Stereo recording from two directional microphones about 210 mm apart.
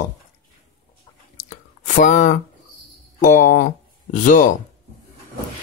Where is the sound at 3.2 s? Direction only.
40° left (ahead or behind).